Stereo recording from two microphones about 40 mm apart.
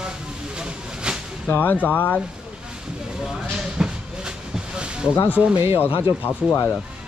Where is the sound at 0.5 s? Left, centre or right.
Right.